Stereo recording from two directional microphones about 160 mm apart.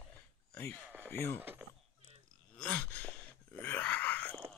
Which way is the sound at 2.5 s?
5° left (ahead or behind).